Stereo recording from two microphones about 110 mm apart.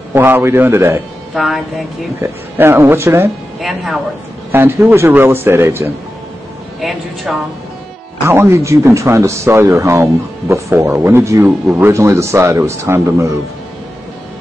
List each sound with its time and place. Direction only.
0.1 s speech: 20° right (ahead or behind)
1.3 s a woman's voice: centre (ahead or behind)
2.2 s speech: 20° right (ahead or behind)
3.6 s speech: 5° right (ahead or behind)
4.5 s speech: 20° right (ahead or behind)
6.8 s speech: centre (ahead or behind)
8.3 s speech: 25° right (ahead or behind)